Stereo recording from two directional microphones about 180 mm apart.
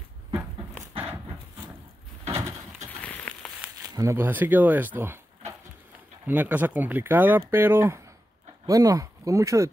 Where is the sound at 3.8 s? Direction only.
20° right (ahead or behind).